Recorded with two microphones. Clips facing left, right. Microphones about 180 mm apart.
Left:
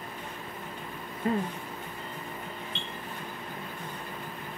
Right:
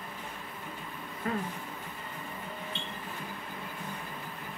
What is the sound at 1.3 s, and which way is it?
Speech, 25° left (ahead or behind).